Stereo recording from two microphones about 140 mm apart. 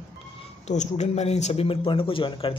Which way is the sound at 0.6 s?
55° left (ahead or behind).